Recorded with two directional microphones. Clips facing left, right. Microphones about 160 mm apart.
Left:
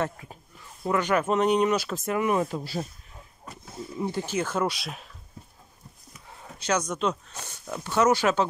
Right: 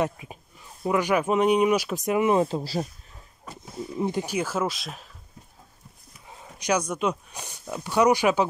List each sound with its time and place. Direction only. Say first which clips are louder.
0.0 s speech: right 3 dB; 15° right (ahead or behind); by 2.9 s 35° right (ahead or behind)
4.0 s speech: right 2 dB; 15° right (ahead or behind); by 5.1 s centre (ahead or behind)
6.2 s speech: right 2 dB; 10° right (ahead or behind)